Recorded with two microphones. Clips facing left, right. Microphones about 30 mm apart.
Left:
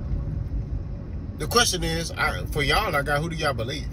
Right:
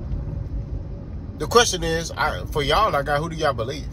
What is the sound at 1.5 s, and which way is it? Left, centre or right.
Speech, left.